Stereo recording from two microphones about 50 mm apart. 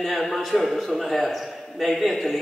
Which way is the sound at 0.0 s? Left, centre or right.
Centre.